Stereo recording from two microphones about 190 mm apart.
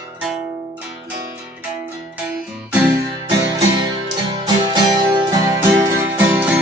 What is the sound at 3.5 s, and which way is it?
Music, 20° right (ahead or behind).